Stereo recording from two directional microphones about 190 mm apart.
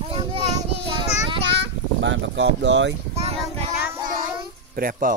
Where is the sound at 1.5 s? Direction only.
70° right (ahead or behind).